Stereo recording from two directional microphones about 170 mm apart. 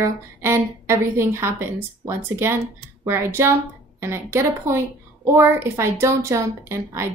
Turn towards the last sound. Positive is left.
turn(degrees=-15)  # may be behind; listen again after turning